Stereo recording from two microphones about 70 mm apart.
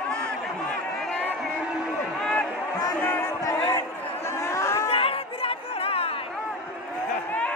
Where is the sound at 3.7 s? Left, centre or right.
Left.